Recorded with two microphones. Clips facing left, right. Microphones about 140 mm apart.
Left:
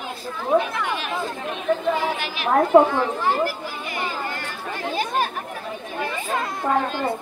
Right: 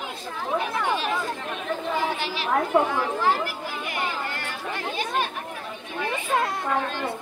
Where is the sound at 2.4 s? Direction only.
50° left (ahead or behind).